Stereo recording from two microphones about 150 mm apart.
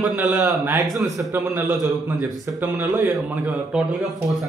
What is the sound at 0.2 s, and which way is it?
Speech, centre (ahead or behind).